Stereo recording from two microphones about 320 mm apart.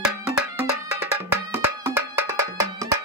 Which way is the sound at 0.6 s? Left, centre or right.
Centre.